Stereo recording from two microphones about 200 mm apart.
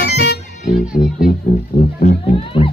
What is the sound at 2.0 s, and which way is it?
Music, 35° left (ahead or behind).